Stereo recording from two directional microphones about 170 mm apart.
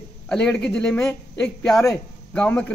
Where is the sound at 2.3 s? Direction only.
10° left (ahead or behind).